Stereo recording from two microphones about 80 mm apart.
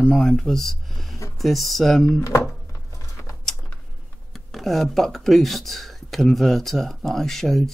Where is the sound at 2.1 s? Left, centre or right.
Left.